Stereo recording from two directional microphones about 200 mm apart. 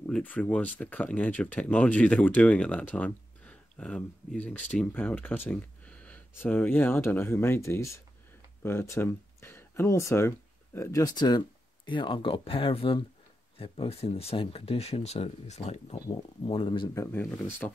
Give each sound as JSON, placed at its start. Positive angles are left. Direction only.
{"t": 0.0, "sound": "speech", "side_deg": 10}